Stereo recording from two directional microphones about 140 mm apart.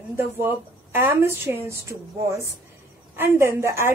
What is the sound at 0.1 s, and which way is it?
A woman's voice, 15° right (ahead or behind).